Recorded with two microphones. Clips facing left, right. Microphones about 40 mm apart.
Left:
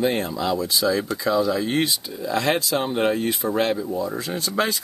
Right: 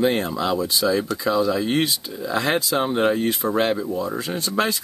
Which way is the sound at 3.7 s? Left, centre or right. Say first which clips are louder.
Right 1 dB; centre.